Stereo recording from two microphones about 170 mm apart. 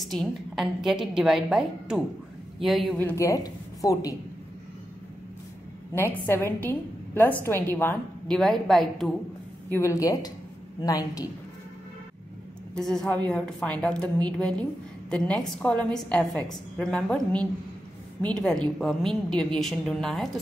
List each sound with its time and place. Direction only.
0.0 s a woman's voice: centre (ahead or behind)
2.9 s a woman's voice: 10° left (ahead or behind)
5.9 s a woman's voice: 10° left (ahead or behind)
8.4 s a woman's voice: centre (ahead or behind)
9.7 s a woman's voice: 15° left (ahead or behind)
12.7 s a woman's voice: 5° left (ahead or behind)